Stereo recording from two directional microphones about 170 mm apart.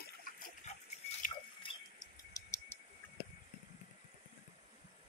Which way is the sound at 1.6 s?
20° left (ahead or behind).